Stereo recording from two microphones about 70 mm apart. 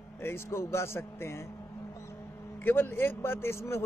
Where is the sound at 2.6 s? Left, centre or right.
Left.